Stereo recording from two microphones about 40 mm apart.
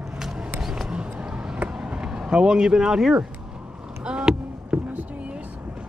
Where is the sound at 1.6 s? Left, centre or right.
Right.